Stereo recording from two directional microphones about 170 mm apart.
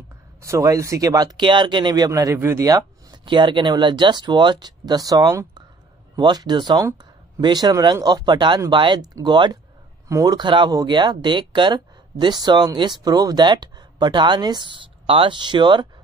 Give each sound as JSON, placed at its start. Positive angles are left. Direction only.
{"t": 0.4, "sound": "speech", "side_deg": -20}